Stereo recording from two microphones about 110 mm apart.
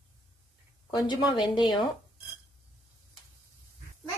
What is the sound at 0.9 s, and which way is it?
Speech, 40° left (ahead or behind).